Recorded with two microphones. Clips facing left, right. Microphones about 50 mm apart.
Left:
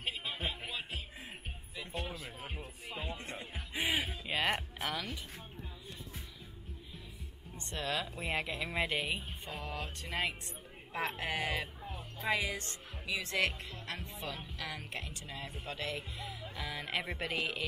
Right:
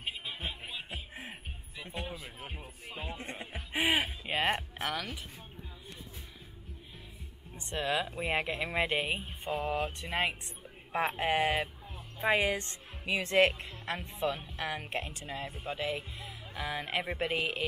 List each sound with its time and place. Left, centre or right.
0.0 s music: centre
2.0 s speech: centre
2.2 s music: centre
3.7 s music: right
4.3 s speech: right
4.8 s speech: centre
7.7 s speech: right
15.8 s speech: centre
16.5 s speech: centre